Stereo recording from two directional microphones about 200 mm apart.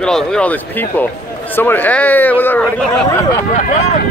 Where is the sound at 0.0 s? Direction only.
5° left (ahead or behind).